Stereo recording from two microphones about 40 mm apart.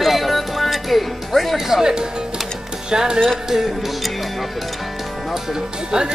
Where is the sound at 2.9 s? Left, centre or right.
Centre.